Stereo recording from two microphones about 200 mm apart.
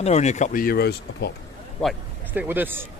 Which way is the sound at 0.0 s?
35° left (ahead or behind).